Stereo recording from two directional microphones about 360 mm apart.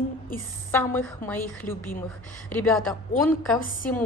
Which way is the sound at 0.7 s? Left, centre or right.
Centre.